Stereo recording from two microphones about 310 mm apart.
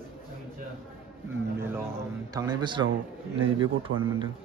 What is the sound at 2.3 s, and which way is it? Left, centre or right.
Speech, centre.